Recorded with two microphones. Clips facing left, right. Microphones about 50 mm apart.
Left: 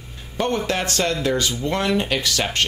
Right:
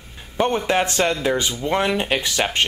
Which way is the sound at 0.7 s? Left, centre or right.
Centre.